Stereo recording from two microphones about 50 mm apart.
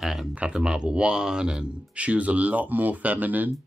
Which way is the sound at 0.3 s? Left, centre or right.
Right.